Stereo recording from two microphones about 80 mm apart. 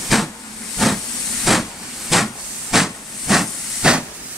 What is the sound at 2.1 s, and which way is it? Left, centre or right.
Hiss, centre.